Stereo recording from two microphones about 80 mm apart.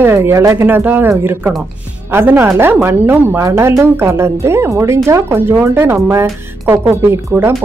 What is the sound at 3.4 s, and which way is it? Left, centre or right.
Speech, right.